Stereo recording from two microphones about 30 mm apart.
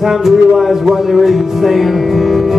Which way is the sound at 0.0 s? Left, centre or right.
Centre.